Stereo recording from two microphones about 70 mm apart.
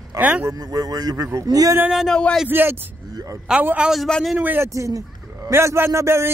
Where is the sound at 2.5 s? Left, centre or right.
Right.